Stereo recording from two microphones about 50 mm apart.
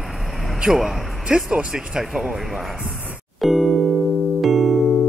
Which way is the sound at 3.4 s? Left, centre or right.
Centre.